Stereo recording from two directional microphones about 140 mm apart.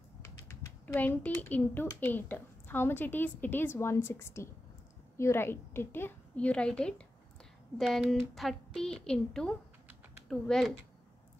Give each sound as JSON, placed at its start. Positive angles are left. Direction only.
{"t": 0.9, "sound": "a woman's voice", "side_deg": 10}